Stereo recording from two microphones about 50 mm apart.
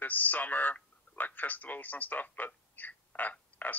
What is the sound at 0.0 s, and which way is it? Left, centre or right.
Speech, left.